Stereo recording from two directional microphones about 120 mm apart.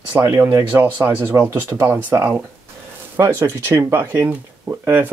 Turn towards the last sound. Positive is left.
turn(degrees=-15)  # may be behind; listen again after turning